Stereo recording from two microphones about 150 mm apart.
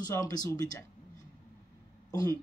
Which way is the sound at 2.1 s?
25° left (ahead or behind).